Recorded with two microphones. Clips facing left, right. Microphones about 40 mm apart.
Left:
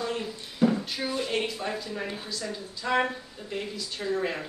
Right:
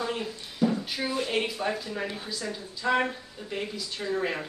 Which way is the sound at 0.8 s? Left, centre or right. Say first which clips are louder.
Right 1 dB; centre.